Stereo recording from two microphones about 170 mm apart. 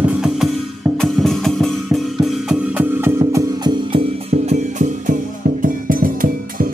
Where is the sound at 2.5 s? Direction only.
10° right (ahead or behind).